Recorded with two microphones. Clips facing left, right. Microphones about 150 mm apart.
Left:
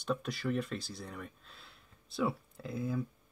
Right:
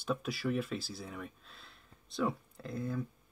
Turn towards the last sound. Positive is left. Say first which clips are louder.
# left 1 dB
turn(degrees=5)  # may be behind; listen again after turning